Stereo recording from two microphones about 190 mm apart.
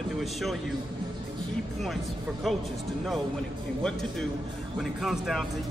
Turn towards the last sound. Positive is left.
turn(degrees=0)  # may be behind; listen again after turning